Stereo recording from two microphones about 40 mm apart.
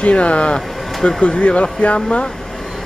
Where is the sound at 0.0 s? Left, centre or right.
Left.